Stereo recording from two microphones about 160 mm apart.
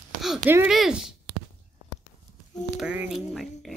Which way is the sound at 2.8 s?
5° right (ahead or behind).